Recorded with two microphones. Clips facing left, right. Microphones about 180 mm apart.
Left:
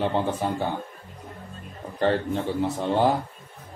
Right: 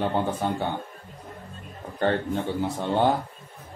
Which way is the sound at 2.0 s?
Centre (ahead or behind).